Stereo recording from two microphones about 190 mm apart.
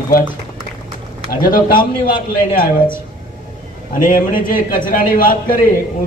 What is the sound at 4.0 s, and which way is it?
A man's voice, 45° left (ahead or behind).